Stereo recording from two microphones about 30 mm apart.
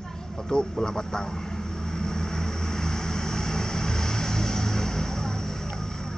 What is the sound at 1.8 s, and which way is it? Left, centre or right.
Vehicle, centre.